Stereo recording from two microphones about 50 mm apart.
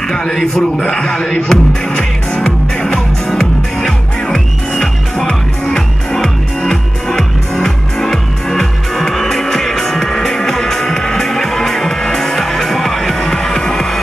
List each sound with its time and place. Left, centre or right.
0.1 s speech: centre
1.9 s music: left
3.3 s music: centre